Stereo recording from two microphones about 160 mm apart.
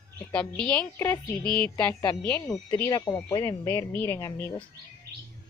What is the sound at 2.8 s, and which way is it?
A woman's voice, 20° left (ahead or behind).